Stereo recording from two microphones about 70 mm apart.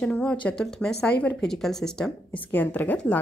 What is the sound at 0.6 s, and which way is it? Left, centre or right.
Speech, centre.